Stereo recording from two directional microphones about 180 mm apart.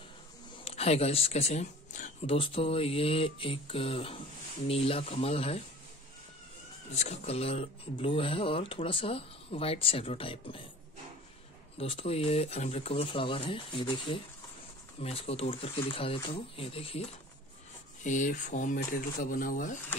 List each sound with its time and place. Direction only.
0.7 s speech: 35° left (ahead or behind)
7.0 s speech: 35° left (ahead or behind)
11.8 s speech: 35° left (ahead or behind)
18.0 s speech: 45° left (ahead or behind)